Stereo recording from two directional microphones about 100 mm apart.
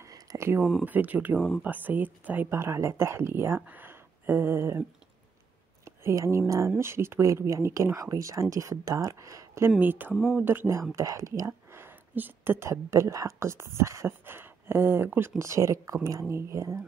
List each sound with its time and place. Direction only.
0.0 s a sound: 35° right (ahead or behind)
0.8 s speech: 15° right (ahead or behind)
5.9 s speech: 30° right (ahead or behind)
9.8 s speech: 20° right (ahead or behind)
10.1 s speech: centre (ahead or behind)
10.4 s speech: 20° right (ahead or behind)